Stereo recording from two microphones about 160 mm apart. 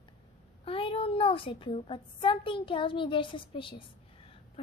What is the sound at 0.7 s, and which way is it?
A woman's voice, 35° left (ahead or behind).